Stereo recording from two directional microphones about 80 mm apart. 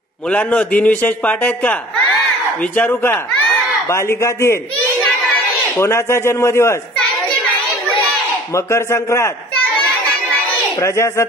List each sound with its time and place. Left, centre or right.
0.3 s a man's voice: centre
3.9 s speech: left
5.8 s speech: left
8.5 s speech: left
10.8 s speech: left